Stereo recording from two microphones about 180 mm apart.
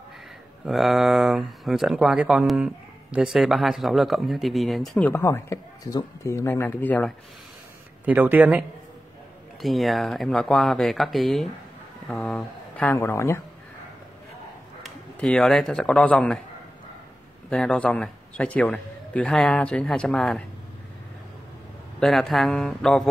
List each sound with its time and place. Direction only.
0.7 s speech: centre (ahead or behind)
8.0 s speech: 10° right (ahead or behind); by 13.4 s 15° left (ahead or behind)
14.8 s speech: 5° left (ahead or behind)
17.5 s speech: 5° left (ahead or behind)
22.0 s speech: centre (ahead or behind)